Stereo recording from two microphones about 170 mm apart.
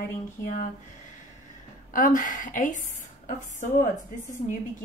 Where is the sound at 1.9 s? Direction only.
50° left (ahead or behind).